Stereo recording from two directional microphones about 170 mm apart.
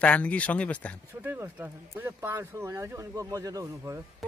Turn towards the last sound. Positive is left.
turn(degrees=-20)  # may be behind; listen again after turning